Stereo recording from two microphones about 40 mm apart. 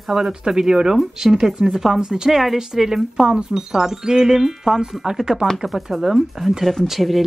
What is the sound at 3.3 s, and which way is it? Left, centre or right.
Speech, right.